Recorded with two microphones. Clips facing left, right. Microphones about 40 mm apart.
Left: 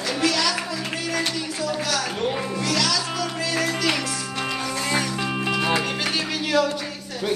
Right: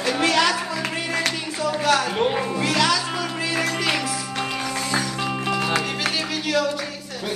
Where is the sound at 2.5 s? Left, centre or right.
Right; by 5.3 s centre.